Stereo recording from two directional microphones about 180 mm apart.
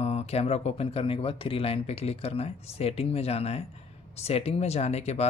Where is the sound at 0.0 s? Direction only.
35° left (ahead or behind).